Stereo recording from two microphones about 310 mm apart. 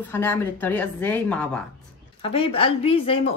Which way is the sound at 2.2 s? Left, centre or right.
Centre.